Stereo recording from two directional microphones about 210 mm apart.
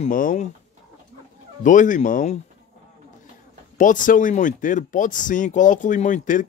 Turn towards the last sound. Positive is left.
turn(degrees=35)  # may be behind; listen again after turning